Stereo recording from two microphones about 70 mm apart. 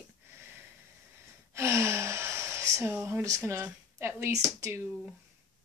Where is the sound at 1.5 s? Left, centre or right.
Right.